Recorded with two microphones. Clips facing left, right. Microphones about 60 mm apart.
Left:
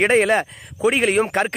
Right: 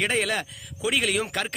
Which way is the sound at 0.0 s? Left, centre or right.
Left.